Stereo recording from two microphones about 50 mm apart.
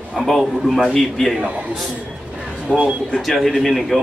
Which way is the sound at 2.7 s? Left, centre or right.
Left.